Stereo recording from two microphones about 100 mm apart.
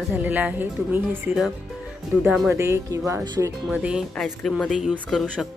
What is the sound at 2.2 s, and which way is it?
Speech, centre (ahead or behind).